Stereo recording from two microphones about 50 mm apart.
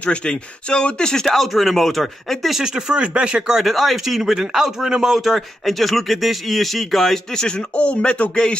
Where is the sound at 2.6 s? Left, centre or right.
Centre.